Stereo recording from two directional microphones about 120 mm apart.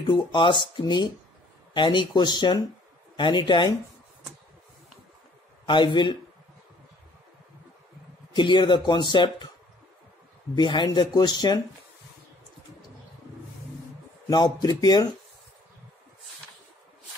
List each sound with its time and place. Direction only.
0.0 s speech: 40° left (ahead or behind)
5.7 s speech: 40° left (ahead or behind)
8.4 s speech: 40° left (ahead or behind)
10.5 s speech: 40° left (ahead or behind)
14.3 s speech: 35° left (ahead or behind)